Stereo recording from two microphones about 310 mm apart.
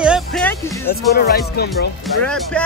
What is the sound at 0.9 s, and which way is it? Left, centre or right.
Speech, left.